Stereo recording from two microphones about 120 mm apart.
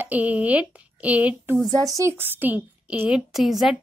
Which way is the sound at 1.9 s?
20° right (ahead or behind).